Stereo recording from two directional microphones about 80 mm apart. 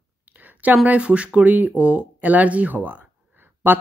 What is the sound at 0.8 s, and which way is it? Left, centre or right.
A woman's voice, centre.